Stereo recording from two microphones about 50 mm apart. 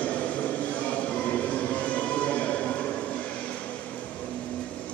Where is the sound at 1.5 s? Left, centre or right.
Left.